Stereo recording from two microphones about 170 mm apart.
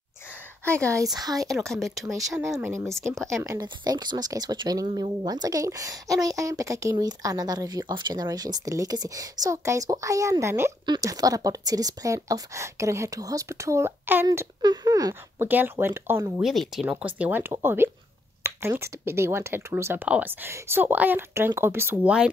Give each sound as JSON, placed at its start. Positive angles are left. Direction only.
{"t": 0.7, "sound": "speech", "side_deg": -15}
{"t": 1.7, "sound": "speech", "side_deg": 0}
{"t": 3.3, "sound": "speech", "side_deg": -20}
{"t": 16.3, "sound": "speech", "side_deg": 0}